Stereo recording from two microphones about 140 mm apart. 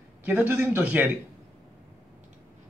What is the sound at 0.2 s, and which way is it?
Speech, 10° right (ahead or behind).